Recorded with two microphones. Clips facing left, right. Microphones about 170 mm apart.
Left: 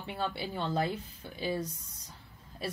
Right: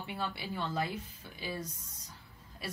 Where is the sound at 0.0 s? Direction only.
25° left (ahead or behind).